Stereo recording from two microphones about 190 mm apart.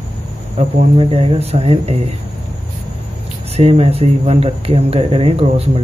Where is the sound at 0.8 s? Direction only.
30° right (ahead or behind).